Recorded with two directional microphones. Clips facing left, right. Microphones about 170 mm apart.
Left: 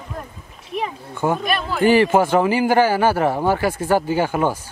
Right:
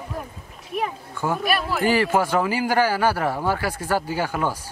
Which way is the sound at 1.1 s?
20° left (ahead or behind).